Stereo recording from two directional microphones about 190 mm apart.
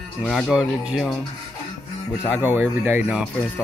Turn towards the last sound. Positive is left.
turn(degrees=-10)  # may be behind; listen again after turning